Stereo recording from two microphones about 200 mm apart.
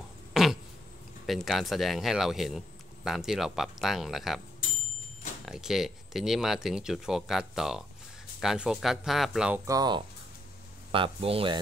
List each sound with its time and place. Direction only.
0.3 s a sound: centre (ahead or behind)
1.2 s speech: centre (ahead or behind)
5.4 s speech: centre (ahead or behind)
9.7 s speech: 20° right (ahead or behind)